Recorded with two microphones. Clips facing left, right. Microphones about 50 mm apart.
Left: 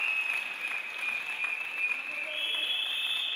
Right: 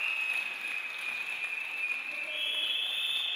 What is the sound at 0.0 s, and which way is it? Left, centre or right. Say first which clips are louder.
Applause: left 2 dB; left.